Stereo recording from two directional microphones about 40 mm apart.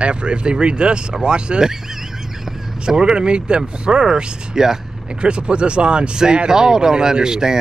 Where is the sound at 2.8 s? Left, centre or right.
Right.